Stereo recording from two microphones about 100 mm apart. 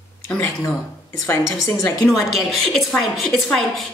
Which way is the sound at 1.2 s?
30° left (ahead or behind).